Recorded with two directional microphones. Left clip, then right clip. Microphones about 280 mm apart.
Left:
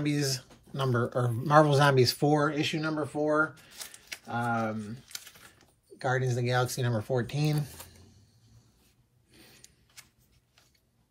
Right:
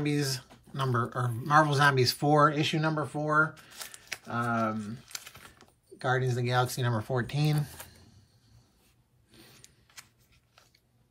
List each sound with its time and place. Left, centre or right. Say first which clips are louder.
0.0 s speech: even; centre
3.7 s shuffling cards: right 2 dB; right
4.4 s speech: right 1 dB; centre
9.3 s a sound: even; centre